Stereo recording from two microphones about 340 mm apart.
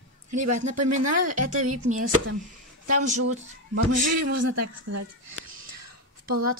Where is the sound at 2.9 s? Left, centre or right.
Right.